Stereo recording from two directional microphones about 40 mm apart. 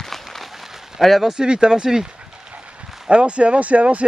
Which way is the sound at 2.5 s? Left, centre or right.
Right.